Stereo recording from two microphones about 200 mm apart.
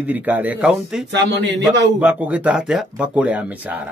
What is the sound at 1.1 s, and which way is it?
Speech, 60° right (ahead or behind).